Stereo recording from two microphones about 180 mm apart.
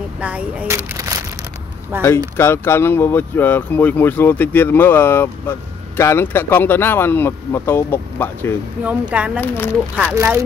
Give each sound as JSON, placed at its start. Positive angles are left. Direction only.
{"t": 0.2, "sound": "speech", "side_deg": -10}
{"t": 0.9, "sound": "a sound", "side_deg": -20}
{"t": 1.9, "sound": "speech", "side_deg": -10}
{"t": 2.3, "sound": "speech", "side_deg": 15}
{"t": 8.8, "sound": "speech", "side_deg": -5}
{"t": 9.4, "sound": "speech", "side_deg": 10}
{"t": 10.1, "sound": "speech", "side_deg": -15}